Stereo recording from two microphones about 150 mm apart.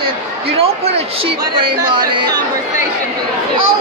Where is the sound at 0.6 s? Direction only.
40° right (ahead or behind).